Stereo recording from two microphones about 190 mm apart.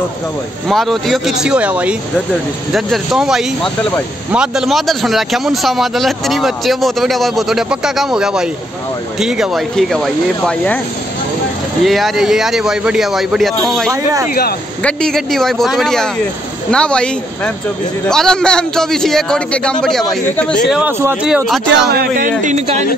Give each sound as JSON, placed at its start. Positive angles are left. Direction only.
{"t": 0.7, "sound": "a man's voice", "side_deg": 0}
{"t": 11.8, "sound": "a man's voice", "side_deg": 0}
{"t": 20.7, "sound": "a man's voice", "side_deg": -10}
{"t": 21.9, "sound": "speech", "side_deg": -50}
{"t": 22.4, "sound": "speech", "side_deg": -40}